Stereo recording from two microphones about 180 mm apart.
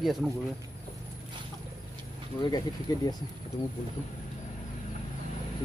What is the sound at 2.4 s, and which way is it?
Speech, 20° left (ahead or behind).